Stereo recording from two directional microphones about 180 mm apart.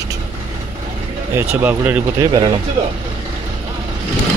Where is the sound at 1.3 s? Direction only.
10° right (ahead or behind).